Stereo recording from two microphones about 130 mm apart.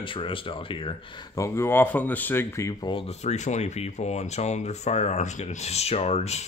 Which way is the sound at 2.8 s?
40° left (ahead or behind).